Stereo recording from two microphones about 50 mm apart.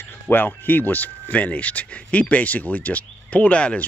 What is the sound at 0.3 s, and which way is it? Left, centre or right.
Speech, left.